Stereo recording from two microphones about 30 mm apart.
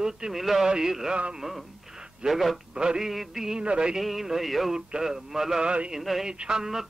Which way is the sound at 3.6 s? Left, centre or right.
Right.